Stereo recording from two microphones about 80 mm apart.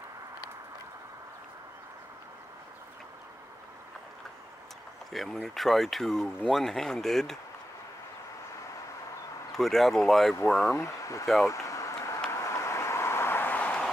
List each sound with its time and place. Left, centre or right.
5.1 s speech: centre
9.6 s speech: centre
10.7 s speech: left
11.4 s a sound: left
12.3 s vehicle: left; by 13.8 s centre